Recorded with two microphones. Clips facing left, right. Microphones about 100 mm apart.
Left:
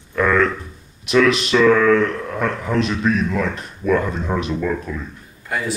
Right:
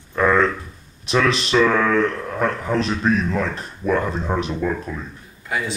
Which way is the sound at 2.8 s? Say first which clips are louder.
Left 2 dB; 35° right (ahead or behind).